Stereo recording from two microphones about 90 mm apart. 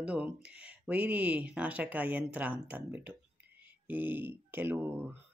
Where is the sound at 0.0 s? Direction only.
15° right (ahead or behind).